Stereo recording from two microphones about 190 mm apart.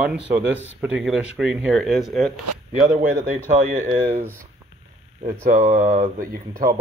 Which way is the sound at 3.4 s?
40° right (ahead or behind).